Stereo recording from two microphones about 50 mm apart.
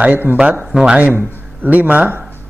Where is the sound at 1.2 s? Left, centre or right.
Right.